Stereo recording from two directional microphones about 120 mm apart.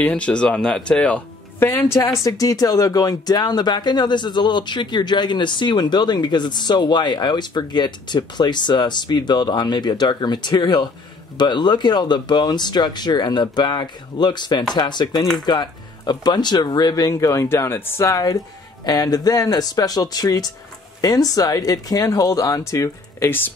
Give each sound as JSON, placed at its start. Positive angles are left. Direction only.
{"t": 0.0, "sound": "speech", "side_deg": 10}